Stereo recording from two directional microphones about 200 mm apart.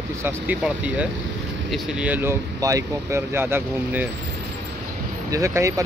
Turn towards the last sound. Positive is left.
turn(degrees=-15)  # may be behind; listen again after turning